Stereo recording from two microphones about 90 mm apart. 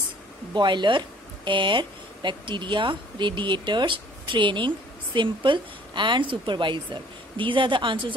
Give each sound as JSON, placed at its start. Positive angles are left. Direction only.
{"t": 0.6, "sound": "speech", "side_deg": -60}